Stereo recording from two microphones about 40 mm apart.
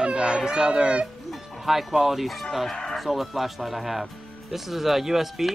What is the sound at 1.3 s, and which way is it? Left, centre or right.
Music, centre.